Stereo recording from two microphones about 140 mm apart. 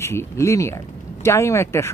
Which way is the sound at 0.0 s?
20° left (ahead or behind).